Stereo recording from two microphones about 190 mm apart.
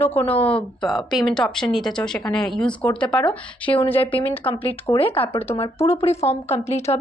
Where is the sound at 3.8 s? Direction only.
30° left (ahead or behind).